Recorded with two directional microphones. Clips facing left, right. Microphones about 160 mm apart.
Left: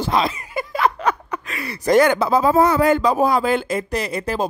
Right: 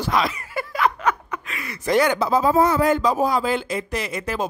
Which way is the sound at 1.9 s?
55° left (ahead or behind).